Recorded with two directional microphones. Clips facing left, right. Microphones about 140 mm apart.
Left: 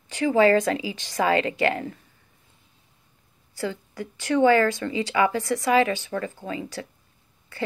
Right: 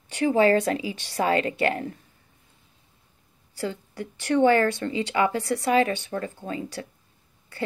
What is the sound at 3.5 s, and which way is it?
Speech, 35° right (ahead or behind).